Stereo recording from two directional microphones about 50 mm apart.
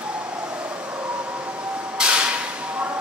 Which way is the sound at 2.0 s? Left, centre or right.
Right.